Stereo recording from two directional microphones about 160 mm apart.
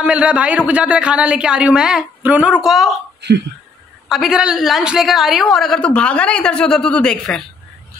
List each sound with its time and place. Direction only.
0.0 s speech: 5° right (ahead or behind)
3.2 s speech: 90° right
4.1 s a woman's voice: centre (ahead or behind)